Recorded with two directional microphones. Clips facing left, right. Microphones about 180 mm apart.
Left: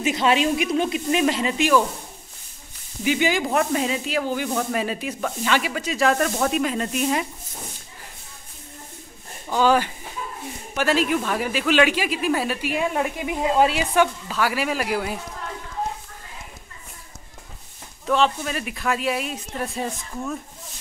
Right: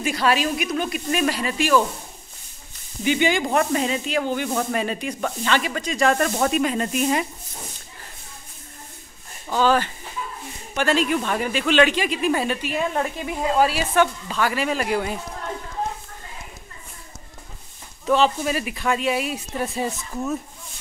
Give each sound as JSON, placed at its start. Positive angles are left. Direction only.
{"t": 0.0, "sound": "speech", "side_deg": 20}
{"t": 3.0, "sound": "speech", "side_deg": 5}
{"t": 9.5, "sound": "speech", "side_deg": 15}
{"t": 13.9, "sound": "speech", "side_deg": 5}
{"t": 18.0, "sound": "speech", "side_deg": 0}